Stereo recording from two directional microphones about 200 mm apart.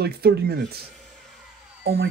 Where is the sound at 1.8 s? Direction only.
50° right (ahead or behind).